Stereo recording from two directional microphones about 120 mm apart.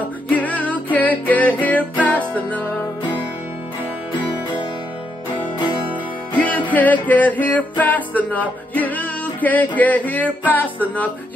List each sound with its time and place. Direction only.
0.3 s music: 15° left (ahead or behind)
4.1 s music: 40° left (ahead or behind)
6.3 s music: 15° left (ahead or behind)